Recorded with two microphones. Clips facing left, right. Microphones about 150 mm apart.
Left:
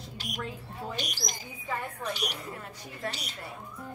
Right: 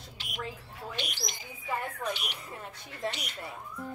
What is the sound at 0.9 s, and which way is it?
Speech, 40° left (ahead or behind).